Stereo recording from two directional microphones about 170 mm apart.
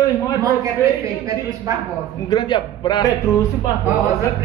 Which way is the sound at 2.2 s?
25° left (ahead or behind).